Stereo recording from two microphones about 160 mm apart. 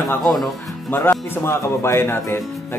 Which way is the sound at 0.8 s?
15° left (ahead or behind).